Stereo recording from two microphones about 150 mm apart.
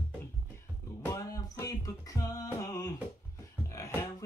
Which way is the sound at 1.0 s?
20° left (ahead or behind).